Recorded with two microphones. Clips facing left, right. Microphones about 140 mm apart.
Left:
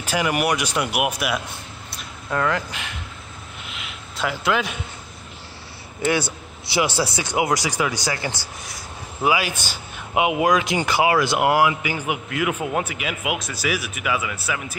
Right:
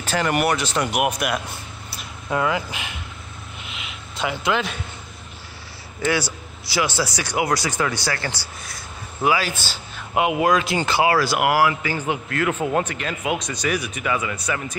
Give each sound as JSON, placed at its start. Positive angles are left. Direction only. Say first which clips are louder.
{"t": 0.0, "sound": "speech", "louder": "right 1 dB", "side_deg": 10}
{"t": 2.2, "sound": "speech", "louder": "right 1 dB", "side_deg": -10}
{"t": 3.7, "sound": "a sound", "louder": "even", "side_deg": 0}
{"t": 6.0, "sound": "a man's voice", "louder": "left 1 dB", "side_deg": 20}